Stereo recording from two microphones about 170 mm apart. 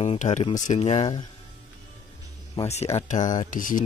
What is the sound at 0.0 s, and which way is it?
Speech, 40° left (ahead or behind).